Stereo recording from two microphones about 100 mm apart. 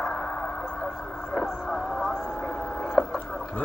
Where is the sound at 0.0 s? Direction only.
10° left (ahead or behind).